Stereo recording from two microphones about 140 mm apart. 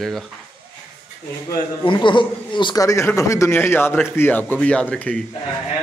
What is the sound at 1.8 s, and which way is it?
Speech, 35° left (ahead or behind).